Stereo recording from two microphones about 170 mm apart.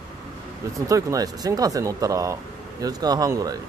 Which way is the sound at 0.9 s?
20° right (ahead or behind).